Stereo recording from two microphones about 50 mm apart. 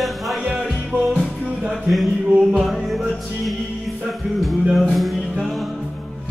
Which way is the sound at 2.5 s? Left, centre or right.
Centre.